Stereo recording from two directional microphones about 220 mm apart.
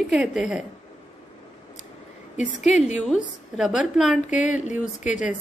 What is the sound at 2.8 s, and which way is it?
A woman's voice, centre (ahead or behind).